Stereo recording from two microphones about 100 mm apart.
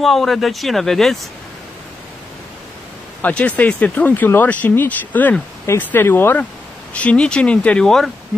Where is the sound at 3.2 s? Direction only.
15° left (ahead or behind).